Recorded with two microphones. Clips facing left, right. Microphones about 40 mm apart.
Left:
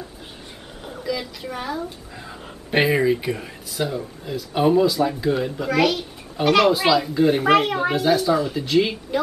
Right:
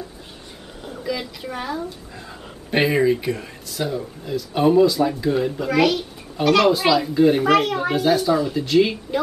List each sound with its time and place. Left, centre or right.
1.0 s speech: centre
7.4 s a child's voice: left
7.9 s speech: centre